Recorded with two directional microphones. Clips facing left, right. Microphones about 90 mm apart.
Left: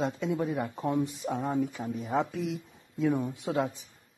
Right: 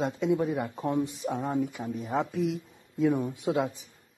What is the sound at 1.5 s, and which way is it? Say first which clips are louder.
Speech: even; 15° right (ahead or behind).